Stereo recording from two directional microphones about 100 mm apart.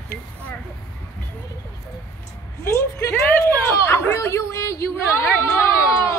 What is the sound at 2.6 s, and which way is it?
Speech, 25° left (ahead or behind).